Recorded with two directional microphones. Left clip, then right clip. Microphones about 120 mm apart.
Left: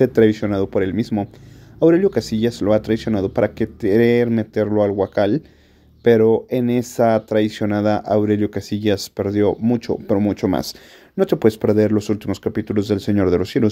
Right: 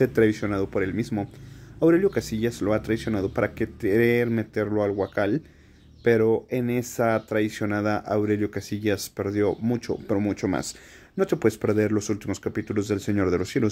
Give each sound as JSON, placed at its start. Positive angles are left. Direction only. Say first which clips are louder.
{"t": 0.0, "sound": "speech", "louder": "left 6 dB", "side_deg": 30}